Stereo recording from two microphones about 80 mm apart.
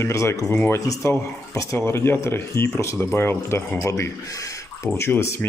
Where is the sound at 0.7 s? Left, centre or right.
Left.